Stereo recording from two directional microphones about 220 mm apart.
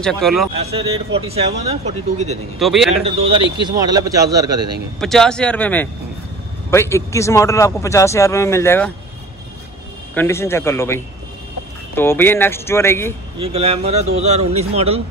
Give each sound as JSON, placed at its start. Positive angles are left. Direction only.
{"t": 0.0, "sound": "speech", "side_deg": 0}
{"t": 0.5, "sound": "speech", "side_deg": -25}
{"t": 2.6, "sound": "speech", "side_deg": 0}
{"t": 3.1, "sound": "a man's voice", "side_deg": -25}
{"t": 5.0, "sound": "speech", "side_deg": 0}
{"t": 10.1, "sound": "speech", "side_deg": 10}
{"t": 13.4, "sound": "speech", "side_deg": -25}